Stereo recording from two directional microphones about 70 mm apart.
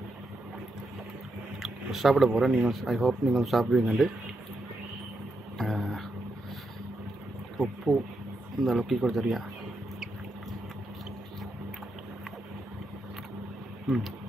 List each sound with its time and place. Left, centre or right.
1.6 s speech: centre
5.6 s mantra: centre
7.5 s speech: centre
13.8 s speech: centre